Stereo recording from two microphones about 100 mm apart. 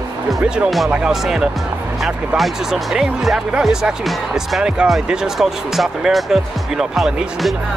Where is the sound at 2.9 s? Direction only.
5° right (ahead or behind).